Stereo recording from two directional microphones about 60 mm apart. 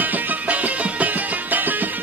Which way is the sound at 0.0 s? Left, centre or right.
Right.